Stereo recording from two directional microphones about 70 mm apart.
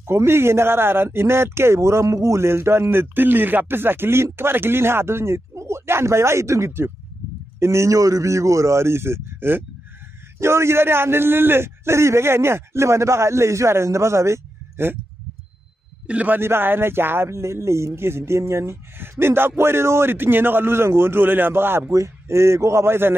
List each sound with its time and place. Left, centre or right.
0.0 s speech: right
16.1 s a man's voice: centre
16.3 s speech: right
21.9 s speech: right